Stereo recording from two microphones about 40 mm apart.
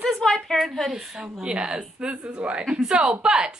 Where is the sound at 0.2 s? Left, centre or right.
Centre.